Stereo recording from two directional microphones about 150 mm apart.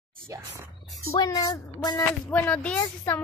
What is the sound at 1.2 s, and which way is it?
Speech, 25° left (ahead or behind).